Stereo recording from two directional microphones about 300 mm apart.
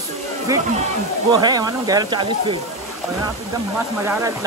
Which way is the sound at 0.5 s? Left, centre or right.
Centre.